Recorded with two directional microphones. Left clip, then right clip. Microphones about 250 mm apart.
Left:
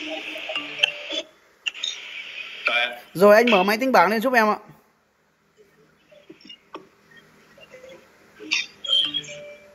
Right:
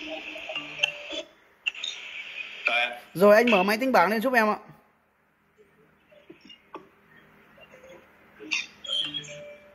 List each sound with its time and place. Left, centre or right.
0.1 s music: centre
1.7 s camera: centre
7.9 s rodents: centre